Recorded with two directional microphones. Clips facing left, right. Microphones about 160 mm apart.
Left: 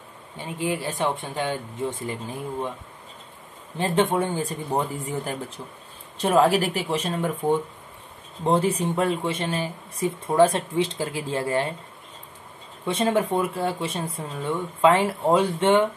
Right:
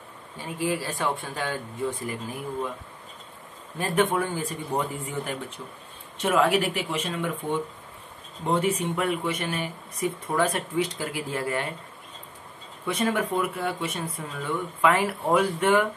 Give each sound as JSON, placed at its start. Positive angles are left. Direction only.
{"t": 0.4, "sound": "speech", "side_deg": 20}
{"t": 3.7, "sound": "speech", "side_deg": 25}
{"t": 8.5, "sound": "speech", "side_deg": 30}
{"t": 12.8, "sound": "speech", "side_deg": 30}